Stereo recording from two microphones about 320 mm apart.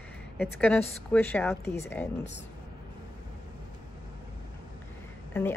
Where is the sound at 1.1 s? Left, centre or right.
Centre.